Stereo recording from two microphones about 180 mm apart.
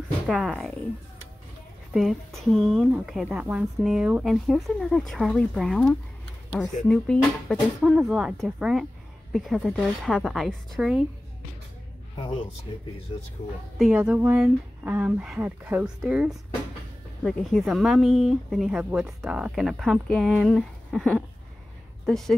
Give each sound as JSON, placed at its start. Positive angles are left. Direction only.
{"t": 0.3, "sound": "speech", "side_deg": 0}
{"t": 1.9, "sound": "speech", "side_deg": 0}
{"t": 12.2, "sound": "a man's voice", "side_deg": 25}
{"t": 13.7, "sound": "speech", "side_deg": -5}